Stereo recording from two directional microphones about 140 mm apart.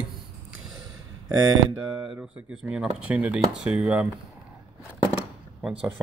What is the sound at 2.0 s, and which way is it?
Speech, 10° right (ahead or behind).